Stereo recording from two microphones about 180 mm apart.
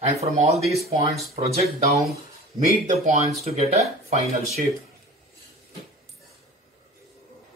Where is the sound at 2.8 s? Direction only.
40° right (ahead or behind).